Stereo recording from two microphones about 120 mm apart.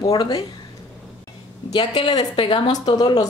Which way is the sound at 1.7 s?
40° left (ahead or behind).